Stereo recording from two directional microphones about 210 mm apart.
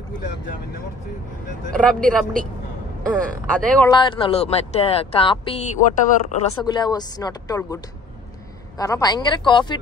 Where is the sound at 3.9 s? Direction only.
20° left (ahead or behind).